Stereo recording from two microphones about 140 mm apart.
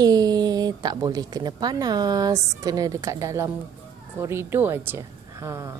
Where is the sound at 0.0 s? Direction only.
25° right (ahead or behind).